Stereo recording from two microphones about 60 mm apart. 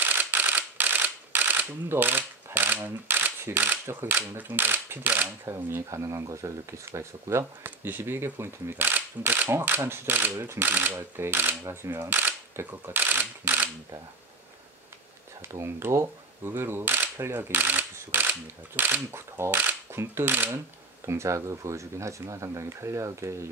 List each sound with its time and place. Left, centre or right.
0.0 s mechanisms: right
3.9 s speech: right
5.9 s speech: right
7.6 s speech: right
10.7 s speech: right
12.5 s a sound: right
15.5 s speech: right
19.1 s speech: right
21.0 s speech: right